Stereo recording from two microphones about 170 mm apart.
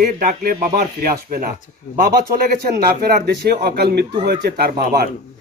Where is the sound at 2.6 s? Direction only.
60° right (ahead or behind).